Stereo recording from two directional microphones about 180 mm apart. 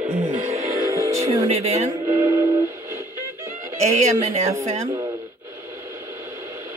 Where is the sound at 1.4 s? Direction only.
35° right (ahead or behind).